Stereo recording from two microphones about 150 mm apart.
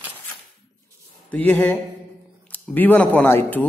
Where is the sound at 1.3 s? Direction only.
10° left (ahead or behind).